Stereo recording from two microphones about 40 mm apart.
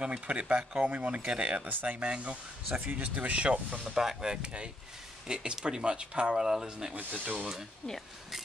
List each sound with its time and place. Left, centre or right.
0.0 s speech: right
1.7 s speech: right
2.0 s speech: right
3.9 s speech: centre
7.0 s speech: right